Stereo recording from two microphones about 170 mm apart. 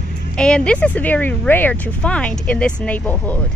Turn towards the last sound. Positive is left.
turn(degrees=10)  # may be behind; listen again after turning